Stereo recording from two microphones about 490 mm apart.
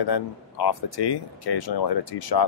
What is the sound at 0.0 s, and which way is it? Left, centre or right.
Speech, left.